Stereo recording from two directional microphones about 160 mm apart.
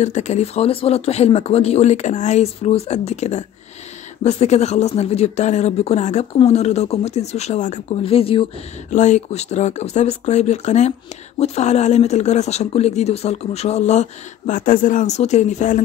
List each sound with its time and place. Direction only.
0.0 s speech: 45° left (ahead or behind)
8.0 s speech: 35° left (ahead or behind)
8.9 s speech: 50° left (ahead or behind)